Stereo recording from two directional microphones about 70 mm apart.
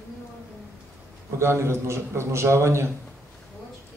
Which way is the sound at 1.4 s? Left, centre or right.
Right.